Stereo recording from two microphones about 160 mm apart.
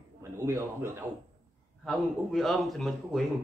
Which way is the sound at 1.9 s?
Centre (ahead or behind).